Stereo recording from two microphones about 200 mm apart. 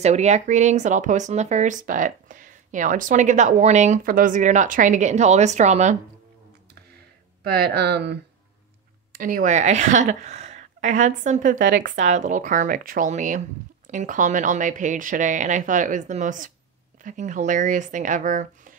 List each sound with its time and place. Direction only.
0.0 s speech: 35° right (ahead or behind)
7.4 s speech: 50° right (ahead or behind)
9.1 s a woman's voice: 40° right (ahead or behind)